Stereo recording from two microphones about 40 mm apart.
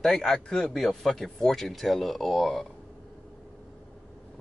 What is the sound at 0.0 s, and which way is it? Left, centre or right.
Speech, centre.